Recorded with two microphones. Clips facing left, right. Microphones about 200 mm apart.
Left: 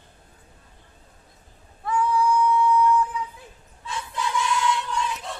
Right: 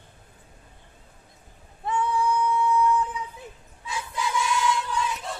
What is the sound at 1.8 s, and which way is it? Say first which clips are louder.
Female singing: left 3 dB; 25° right (ahead or behind).